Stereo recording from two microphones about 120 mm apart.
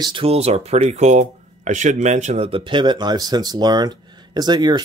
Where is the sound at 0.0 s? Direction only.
45° right (ahead or behind).